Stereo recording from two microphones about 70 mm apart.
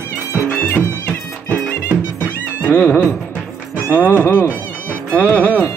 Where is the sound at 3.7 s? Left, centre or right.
Left.